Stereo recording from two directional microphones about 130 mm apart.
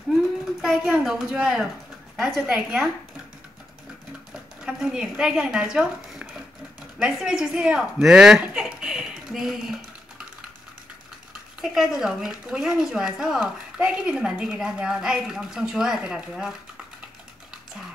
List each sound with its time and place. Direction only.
0.6 s a woman's voice: 5° right (ahead or behind)
4.3 s speech: 5° right (ahead or behind)
11.6 s a woman's voice: 5° right (ahead or behind)